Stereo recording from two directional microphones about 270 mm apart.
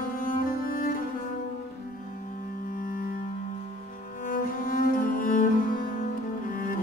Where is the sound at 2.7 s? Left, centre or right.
Left.